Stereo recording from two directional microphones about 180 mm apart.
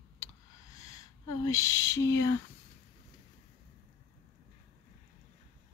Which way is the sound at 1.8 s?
85° left.